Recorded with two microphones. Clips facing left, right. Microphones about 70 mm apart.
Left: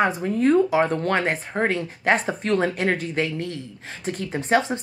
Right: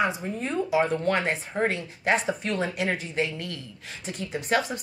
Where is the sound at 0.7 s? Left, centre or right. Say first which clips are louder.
Left 3 dB; left.